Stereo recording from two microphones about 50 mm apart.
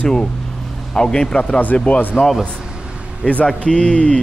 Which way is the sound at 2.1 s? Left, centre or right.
Centre.